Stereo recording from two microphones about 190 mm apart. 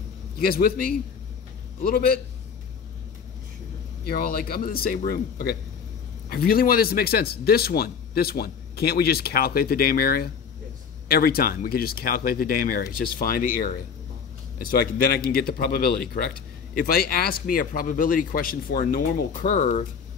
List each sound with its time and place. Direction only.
0.4 s a man's voice: 50° left (ahead or behind)
4.0 s a man's voice: 50° left (ahead or behind)
19.4 s speech: 40° left (ahead or behind)